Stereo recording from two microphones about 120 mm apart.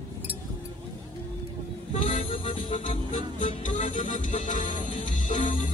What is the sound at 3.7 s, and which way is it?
Music, 85° left.